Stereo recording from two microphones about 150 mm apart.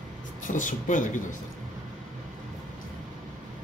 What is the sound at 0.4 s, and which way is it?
Speech, 60° left (ahead or behind).